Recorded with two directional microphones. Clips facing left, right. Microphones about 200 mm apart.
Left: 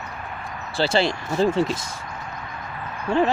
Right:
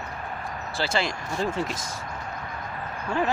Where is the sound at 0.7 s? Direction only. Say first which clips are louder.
Left 7 dB; 30° left (ahead or behind).